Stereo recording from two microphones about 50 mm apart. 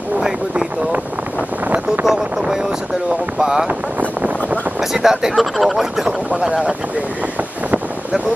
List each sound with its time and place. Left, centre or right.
2.0 s speech: centre
4.9 s speech: centre
6.0 s speech: centre